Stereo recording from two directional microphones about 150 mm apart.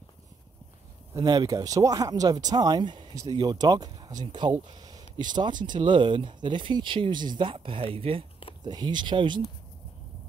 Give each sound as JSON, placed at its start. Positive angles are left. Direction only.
{"t": 1.1, "sound": "speech", "side_deg": -25}